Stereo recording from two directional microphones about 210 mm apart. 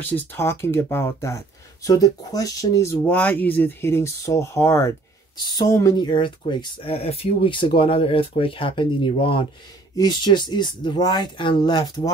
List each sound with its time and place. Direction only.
0.0 s speech: 10° left (ahead or behind)